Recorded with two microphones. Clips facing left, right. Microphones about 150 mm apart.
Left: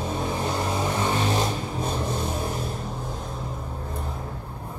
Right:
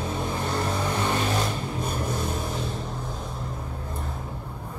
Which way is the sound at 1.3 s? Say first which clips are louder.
Left 2 dB; 30° left (ahead or behind).